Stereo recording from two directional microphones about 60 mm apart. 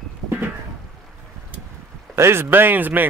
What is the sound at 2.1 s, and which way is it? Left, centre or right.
Speech, right.